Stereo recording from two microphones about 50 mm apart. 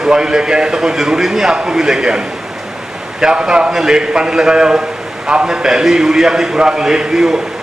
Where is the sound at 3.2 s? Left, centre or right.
Centre.